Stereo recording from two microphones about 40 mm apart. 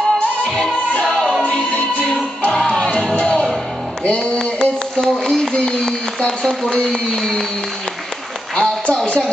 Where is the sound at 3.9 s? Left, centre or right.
Left.